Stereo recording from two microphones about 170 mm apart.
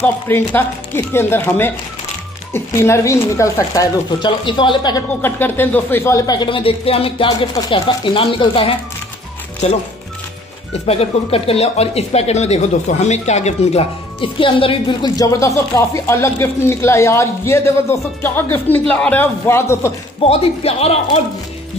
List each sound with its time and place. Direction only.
0.0 s speech: 10° left (ahead or behind); by 5.0 s 25° left (ahead or behind)
5.2 s speech: 10° left (ahead or behind); by 8.7 s 30° left (ahead or behind)
10.9 s speech: 35° left (ahead or behind); by 19.9 s 15° left (ahead or behind)
20.2 s speech: 35° left (ahead or behind)